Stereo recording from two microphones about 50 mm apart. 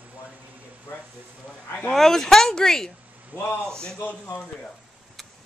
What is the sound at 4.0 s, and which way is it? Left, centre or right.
Speech, left.